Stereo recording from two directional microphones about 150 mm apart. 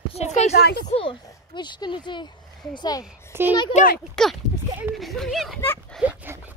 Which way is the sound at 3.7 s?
65° left (ahead or behind).